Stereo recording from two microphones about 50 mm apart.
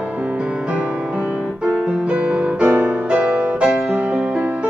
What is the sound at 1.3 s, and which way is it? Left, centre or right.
Music, right.